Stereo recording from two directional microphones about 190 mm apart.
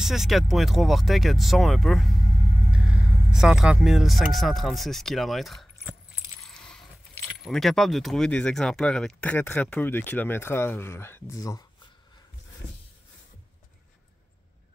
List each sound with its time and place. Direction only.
0.0 s speech: centre (ahead or behind); by 11.6 s 15° left (ahead or behind)